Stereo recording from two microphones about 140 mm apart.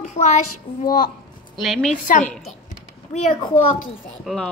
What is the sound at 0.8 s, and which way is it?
Speech, 90° left.